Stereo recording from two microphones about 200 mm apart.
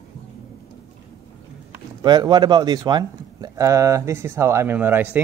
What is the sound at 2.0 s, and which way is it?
Speech, 20° right (ahead or behind).